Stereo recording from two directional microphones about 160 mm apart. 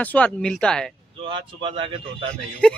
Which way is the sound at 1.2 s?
35° right (ahead or behind).